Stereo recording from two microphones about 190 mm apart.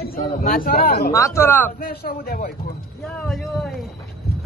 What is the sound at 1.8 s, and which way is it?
Speech, 50° left (ahead or behind).